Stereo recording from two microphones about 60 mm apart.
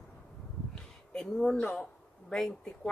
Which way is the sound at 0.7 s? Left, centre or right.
Centre.